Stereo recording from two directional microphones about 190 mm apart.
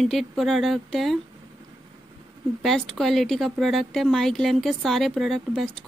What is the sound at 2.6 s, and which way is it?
Speech, centre (ahead or behind).